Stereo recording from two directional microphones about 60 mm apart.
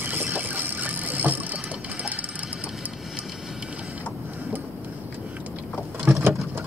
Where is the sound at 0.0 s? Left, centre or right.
Right.